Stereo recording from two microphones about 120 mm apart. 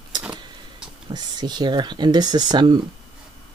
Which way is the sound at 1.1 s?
35° right (ahead or behind).